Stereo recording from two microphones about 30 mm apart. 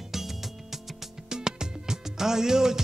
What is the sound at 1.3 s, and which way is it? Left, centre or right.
Music, right.